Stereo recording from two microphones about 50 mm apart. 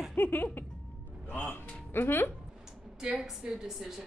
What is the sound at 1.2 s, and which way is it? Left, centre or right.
Music, left.